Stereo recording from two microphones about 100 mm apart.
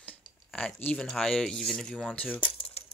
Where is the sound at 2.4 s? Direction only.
55° left (ahead or behind); by 2.8 s 75° left (ahead or behind).